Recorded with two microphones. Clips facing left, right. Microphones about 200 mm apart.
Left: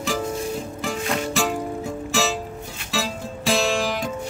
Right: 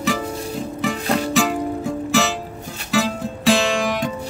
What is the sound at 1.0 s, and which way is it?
Music, 35° right (ahead or behind).